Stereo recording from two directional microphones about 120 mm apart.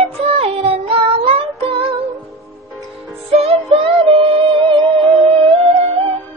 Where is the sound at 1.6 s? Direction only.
50° right (ahead or behind).